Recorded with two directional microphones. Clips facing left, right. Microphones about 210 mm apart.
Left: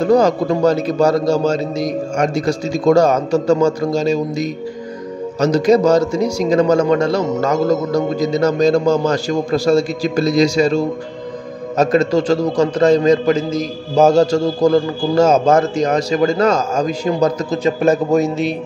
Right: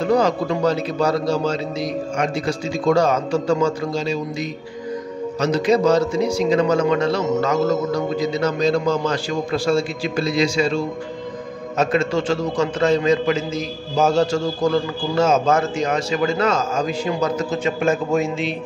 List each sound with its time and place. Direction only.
0.0 s a man's voice: 40° left (ahead or behind)